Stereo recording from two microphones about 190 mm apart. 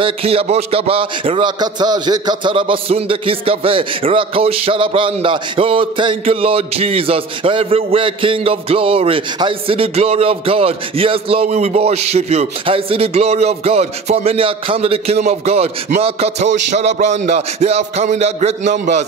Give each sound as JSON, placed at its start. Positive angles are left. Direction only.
{"t": 0.0, "sound": "a man's voice", "side_deg": -30}